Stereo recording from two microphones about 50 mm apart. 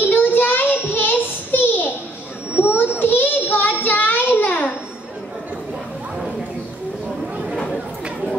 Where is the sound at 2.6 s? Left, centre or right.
Left.